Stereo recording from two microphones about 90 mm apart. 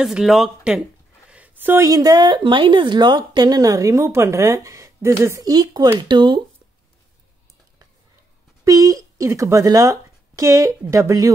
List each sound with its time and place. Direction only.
0.0 s speech: 5° right (ahead or behind)
1.3 s a sound: 20° right (ahead or behind)
1.8 s speech: 40° right (ahead or behind)
5.5 s speech: 45° right (ahead or behind)
8.6 s speech: 40° right (ahead or behind)